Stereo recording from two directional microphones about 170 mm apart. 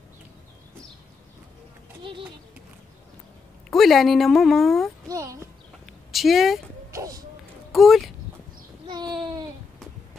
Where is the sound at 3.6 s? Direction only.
Centre (ahead or behind).